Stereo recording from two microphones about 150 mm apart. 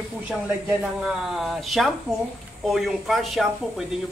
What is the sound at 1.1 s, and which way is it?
Speech, centre (ahead or behind).